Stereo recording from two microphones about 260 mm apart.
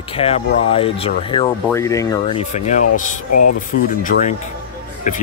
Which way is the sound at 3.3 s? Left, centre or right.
Left.